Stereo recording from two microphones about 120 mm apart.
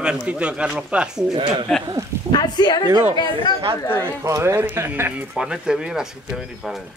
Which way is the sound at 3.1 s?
50° right (ahead or behind).